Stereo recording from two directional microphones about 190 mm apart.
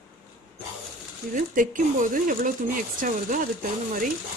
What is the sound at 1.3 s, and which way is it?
Speech, 45° right (ahead or behind).